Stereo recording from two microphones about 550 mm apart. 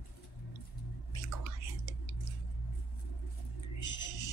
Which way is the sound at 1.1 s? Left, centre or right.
Left.